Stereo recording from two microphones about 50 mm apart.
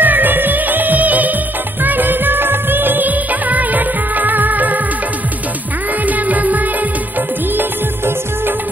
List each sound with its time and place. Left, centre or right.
0.0 s music: right
1.8 s music of bollywood: right
6.0 s music: right